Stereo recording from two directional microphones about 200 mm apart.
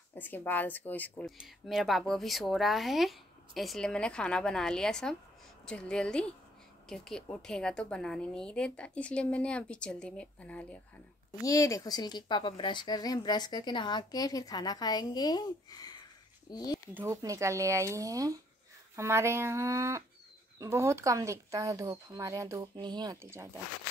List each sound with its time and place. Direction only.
0.1 s speech: 10° left (ahead or behind)
16.4 s a sound: 20° left (ahead or behind)
16.9 s speech: 15° right (ahead or behind)